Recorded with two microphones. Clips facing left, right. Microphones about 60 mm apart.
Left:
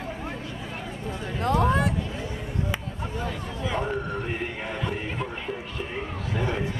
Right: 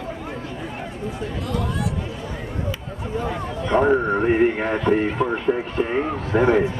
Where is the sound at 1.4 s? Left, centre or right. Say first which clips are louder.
Left 6 dB; left.